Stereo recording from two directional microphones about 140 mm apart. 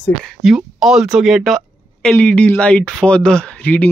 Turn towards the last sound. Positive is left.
turn(degrees=10)  # may be behind; listen again after turning